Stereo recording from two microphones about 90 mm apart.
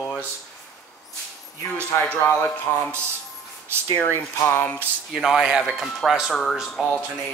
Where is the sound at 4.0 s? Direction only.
25° left (ahead or behind).